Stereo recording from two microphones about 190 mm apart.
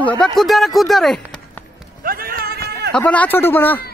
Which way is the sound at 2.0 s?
50° right (ahead or behind).